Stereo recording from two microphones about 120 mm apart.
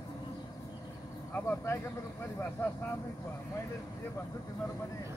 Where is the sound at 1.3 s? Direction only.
20° left (ahead or behind).